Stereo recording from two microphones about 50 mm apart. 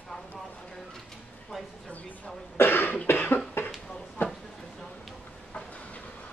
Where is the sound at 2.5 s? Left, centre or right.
Left.